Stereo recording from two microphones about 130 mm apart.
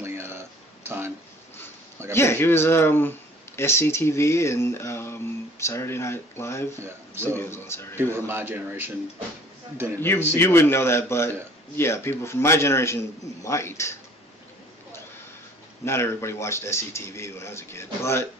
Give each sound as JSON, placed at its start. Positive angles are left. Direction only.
{"t": 0.0, "sound": "a sound", "side_deg": -20}
{"t": 2.1, "sound": "speech", "side_deg": 20}
{"t": 6.8, "sound": "speech", "side_deg": -20}
{"t": 7.3, "sound": "speech", "side_deg": 20}
{"t": 8.0, "sound": "a man's voice", "side_deg": -20}
{"t": 9.9, "sound": "a man's voice", "side_deg": 15}
{"t": 15.8, "sound": "speech", "side_deg": 20}